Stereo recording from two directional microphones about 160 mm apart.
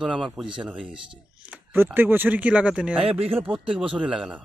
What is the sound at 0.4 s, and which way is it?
A man's voice, 5° right (ahead or behind).